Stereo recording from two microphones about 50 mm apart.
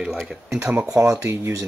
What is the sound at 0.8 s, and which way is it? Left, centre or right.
Speech, right.